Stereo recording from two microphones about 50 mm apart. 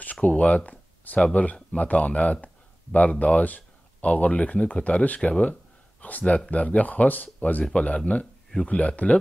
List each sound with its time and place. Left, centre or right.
0.0 s speech: left